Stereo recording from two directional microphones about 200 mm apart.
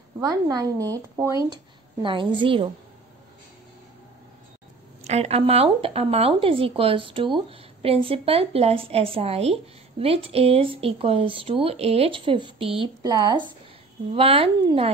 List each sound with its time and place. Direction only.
0.2 s speech: 20° right (ahead or behind)
5.0 s speech: 30° right (ahead or behind)
14.1 s speech: 30° right (ahead or behind)